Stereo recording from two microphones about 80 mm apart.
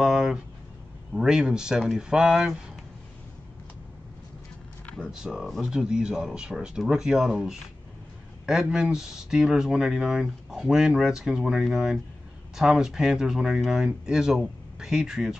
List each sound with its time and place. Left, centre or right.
0.0 s a sound: centre
1.1 s speech: centre
5.0 s speech: centre